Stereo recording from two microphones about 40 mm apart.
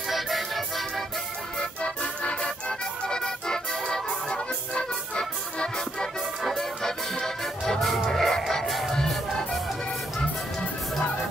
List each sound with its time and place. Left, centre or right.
0.1 s music: centre
1.8 s music: left
3.1 s music: centre
4.1 s music: left
6.4 s music: centre